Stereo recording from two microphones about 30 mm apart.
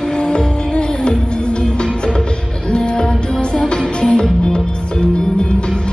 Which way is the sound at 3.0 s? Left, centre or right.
Left.